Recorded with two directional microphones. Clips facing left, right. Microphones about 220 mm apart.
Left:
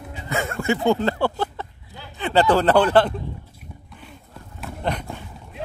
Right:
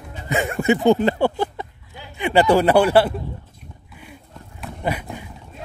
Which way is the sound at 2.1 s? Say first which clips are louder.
Right 2 dB; 10° right (ahead or behind).